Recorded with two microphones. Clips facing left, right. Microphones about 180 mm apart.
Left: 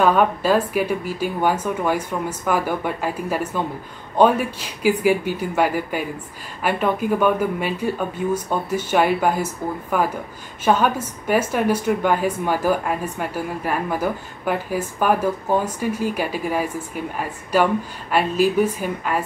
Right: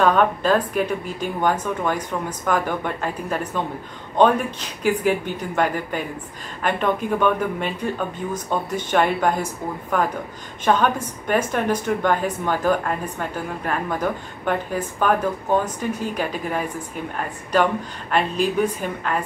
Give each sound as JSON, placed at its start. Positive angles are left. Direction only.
{"t": 0.0, "sound": "a woman's voice", "side_deg": 5}